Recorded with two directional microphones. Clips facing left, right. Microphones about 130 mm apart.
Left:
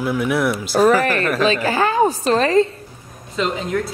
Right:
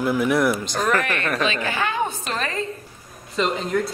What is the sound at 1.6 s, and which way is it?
A woman's voice, 35° left (ahead or behind).